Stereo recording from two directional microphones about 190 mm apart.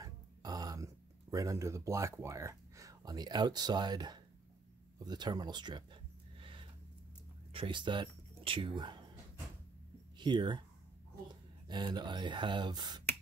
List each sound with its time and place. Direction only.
0.0 s a sound: 20° right (ahead or behind)
5.0 s speech: 20° right (ahead or behind)
7.5 s speech: 25° right (ahead or behind)
10.1 s speech: 25° right (ahead or behind)
11.6 s speech: 25° right (ahead or behind)